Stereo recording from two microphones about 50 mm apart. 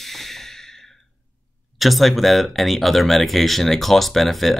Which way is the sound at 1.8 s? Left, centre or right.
Centre.